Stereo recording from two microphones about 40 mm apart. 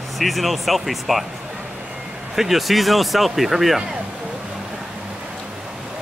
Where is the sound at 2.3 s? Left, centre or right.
Centre.